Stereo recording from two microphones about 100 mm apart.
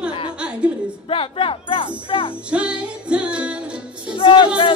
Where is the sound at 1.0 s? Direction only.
70° left (ahead or behind).